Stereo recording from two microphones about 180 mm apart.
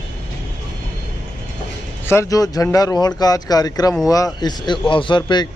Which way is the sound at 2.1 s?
15° left (ahead or behind).